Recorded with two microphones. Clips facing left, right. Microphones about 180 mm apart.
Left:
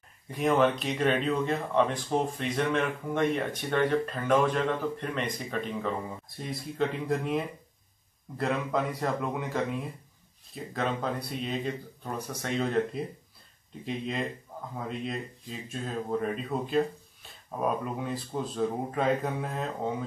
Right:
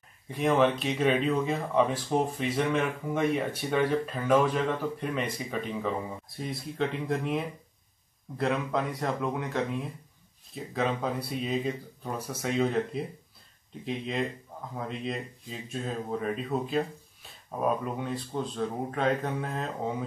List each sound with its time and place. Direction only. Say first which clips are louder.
0.3 s speech: even; centre (ahead or behind)